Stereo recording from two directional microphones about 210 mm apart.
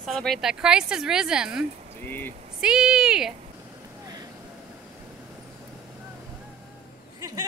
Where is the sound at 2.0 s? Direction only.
10° left (ahead or behind).